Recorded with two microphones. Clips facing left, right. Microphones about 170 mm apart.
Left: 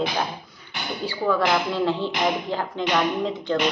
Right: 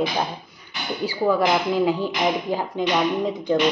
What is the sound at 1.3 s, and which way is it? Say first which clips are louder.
Speech: right 2 dB; 15° right (ahead or behind).